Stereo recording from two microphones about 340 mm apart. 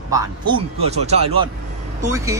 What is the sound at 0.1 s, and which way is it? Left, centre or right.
Speech, centre.